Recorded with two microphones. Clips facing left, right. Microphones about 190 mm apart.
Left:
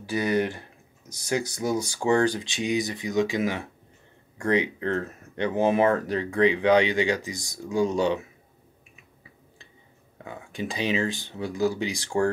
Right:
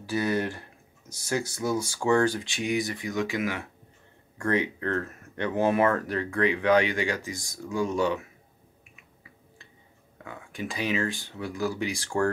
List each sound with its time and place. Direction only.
0.0 s speech: 15° left (ahead or behind)
10.2 s speech: 25° left (ahead or behind)